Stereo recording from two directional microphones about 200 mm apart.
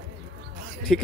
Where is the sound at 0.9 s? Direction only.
Centre (ahead or behind).